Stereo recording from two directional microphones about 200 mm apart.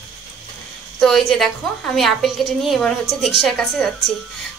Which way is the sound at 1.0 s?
Centre (ahead or behind).